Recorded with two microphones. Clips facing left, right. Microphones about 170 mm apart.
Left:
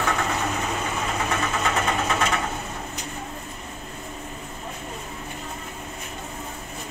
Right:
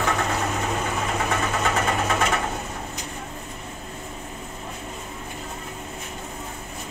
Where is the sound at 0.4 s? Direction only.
20° right (ahead or behind).